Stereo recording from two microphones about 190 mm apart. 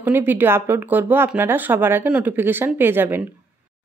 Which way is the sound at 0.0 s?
10° right (ahead or behind).